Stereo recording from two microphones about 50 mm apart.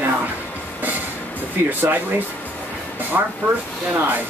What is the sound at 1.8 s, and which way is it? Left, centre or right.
Speech, right.